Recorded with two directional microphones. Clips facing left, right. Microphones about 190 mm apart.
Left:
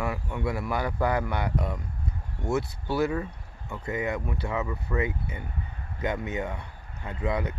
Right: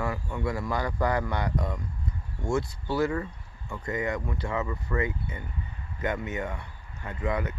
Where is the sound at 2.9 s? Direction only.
15° left (ahead or behind).